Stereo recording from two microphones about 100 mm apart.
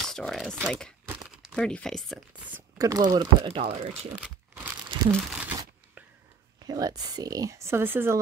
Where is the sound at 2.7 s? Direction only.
35° right (ahead or behind).